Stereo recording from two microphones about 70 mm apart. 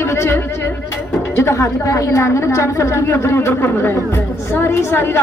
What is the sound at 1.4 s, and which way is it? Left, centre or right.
A woman's voice, left.